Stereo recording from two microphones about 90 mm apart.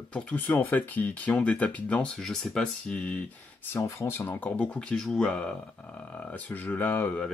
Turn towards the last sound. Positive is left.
turn(degrees=20)  # may be behind; listen again after turning